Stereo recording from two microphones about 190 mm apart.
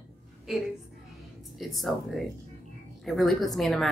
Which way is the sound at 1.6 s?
Centre (ahead or behind).